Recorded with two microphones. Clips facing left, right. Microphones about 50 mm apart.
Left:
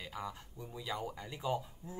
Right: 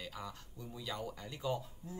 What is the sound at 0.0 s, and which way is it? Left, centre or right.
Speech, centre.